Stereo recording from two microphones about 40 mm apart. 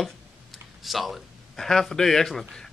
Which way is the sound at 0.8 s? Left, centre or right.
Centre.